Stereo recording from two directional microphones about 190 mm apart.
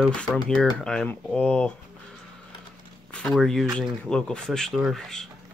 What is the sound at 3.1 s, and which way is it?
Speech, centre (ahead or behind).